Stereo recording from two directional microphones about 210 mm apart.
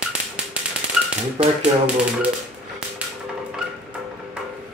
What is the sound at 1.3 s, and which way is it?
Speech, 5° right (ahead or behind).